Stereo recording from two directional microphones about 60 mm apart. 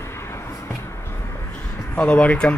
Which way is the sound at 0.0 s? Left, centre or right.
Left.